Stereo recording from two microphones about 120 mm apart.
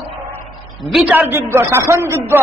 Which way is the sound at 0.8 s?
Centre (ahead or behind).